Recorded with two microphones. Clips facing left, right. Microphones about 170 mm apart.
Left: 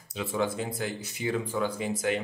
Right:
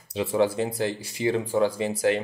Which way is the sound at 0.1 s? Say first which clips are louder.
Right 6 dB; 30° right (ahead or behind).